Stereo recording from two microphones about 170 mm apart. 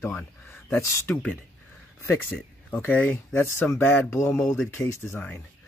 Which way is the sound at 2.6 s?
10° left (ahead or behind).